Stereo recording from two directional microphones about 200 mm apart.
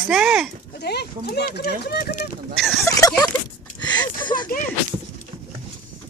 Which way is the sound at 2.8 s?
15° left (ahead or behind).